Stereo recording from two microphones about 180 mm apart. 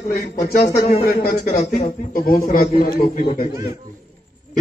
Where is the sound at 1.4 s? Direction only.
50° left (ahead or behind).